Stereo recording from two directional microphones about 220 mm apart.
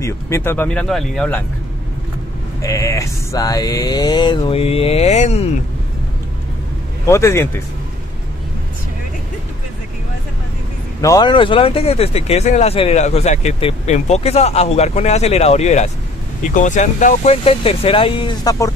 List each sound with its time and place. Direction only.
0.0 s speech: 10° left (ahead or behind)
2.6 s speech: 15° left (ahead or behind); by 5.5 s 30° left (ahead or behind)
7.1 s speech: 10° left (ahead or behind)
11.0 s speech: 15° left (ahead or behind)